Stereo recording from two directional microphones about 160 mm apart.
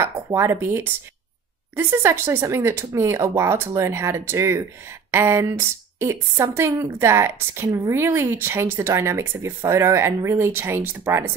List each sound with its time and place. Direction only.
0.0 s a woman's voice: 15° right (ahead or behind)